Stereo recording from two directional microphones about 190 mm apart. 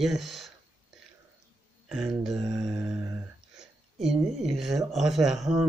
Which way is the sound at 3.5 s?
Centre (ahead or behind).